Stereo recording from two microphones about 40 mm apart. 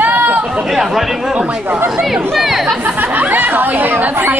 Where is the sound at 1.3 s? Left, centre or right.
Right.